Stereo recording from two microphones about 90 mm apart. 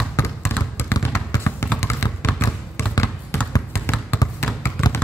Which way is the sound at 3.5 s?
30° left (ahead or behind).